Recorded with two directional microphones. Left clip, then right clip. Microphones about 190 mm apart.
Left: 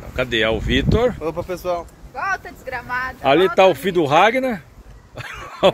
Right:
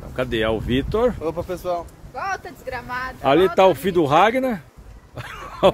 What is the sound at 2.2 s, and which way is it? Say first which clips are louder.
Speech: left 3 dB; 70° right (ahead or behind).